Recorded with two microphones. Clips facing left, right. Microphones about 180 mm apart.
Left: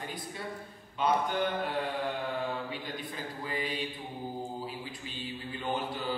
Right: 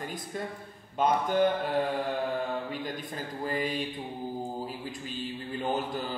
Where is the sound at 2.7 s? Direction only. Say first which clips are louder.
Right 3 dB; 45° right (ahead or behind).